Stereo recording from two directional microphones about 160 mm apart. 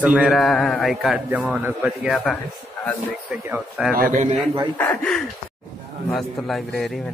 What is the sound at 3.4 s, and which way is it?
Speech, 10° right (ahead or behind).